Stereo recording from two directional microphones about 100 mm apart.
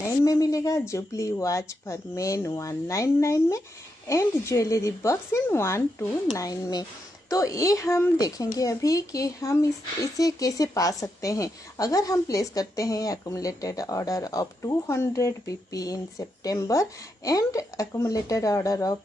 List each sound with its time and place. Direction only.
0.2 s speech: 35° left (ahead or behind)